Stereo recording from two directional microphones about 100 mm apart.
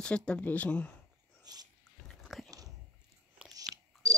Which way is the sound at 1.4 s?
40° right (ahead or behind).